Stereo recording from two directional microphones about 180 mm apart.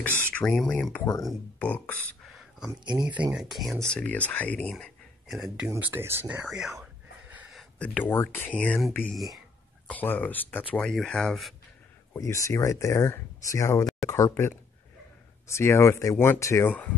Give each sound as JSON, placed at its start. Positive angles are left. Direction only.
{"t": 0.0, "sound": "speech", "side_deg": 10}
{"t": 2.2, "sound": "a sound", "side_deg": 0}
{"t": 2.8, "sound": "speech", "side_deg": -25}
{"t": 3.2, "sound": "speech", "side_deg": -5}
{"t": 5.7, "sound": "a sound", "side_deg": -10}
{"t": 7.8, "sound": "speech", "side_deg": 10}
{"t": 12.1, "sound": "speech", "side_deg": 15}